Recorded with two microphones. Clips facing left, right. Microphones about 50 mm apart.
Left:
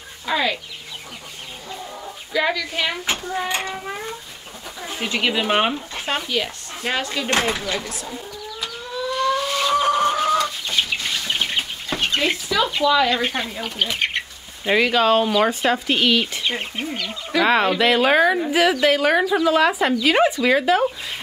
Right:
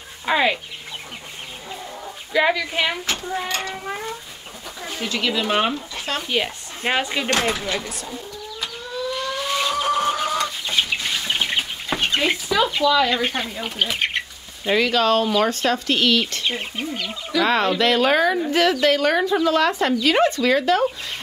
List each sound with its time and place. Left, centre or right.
0.3 s speech: right
2.3 s speech: centre
3.2 s speech: centre
3.4 s a sound: centre
3.7 s speech: centre
5.0 s speech: left
5.9 s a sound: left
6.2 s speech: centre
7.7 s speech: centre
9.3 s vehicle: centre
10.0 s chicken: centre
12.8 s speech: centre
13.1 s speech: centre
14.6 s speech: centre